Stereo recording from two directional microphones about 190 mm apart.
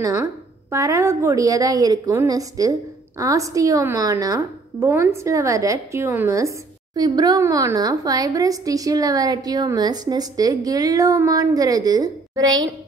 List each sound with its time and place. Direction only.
0.0 s a woman's voice: 15° right (ahead or behind)